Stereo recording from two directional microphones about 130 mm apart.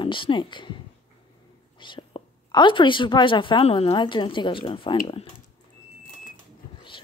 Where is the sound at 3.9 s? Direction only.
40° left (ahead or behind).